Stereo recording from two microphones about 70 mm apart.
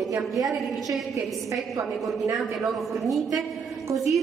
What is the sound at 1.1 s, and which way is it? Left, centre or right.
Speech, right.